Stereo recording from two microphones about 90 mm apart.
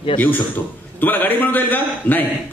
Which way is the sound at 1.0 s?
20° left (ahead or behind).